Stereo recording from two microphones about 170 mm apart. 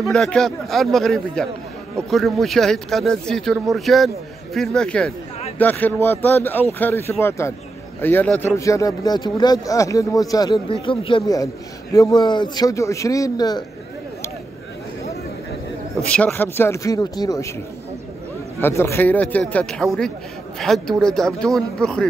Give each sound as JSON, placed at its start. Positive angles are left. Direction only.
{"t": 0.0, "sound": "a man's voice", "side_deg": 5}
{"t": 10.5, "sound": "a man's voice", "side_deg": 30}
{"t": 16.0, "sound": "speech", "side_deg": 5}
{"t": 18.6, "sound": "a man's voice", "side_deg": 15}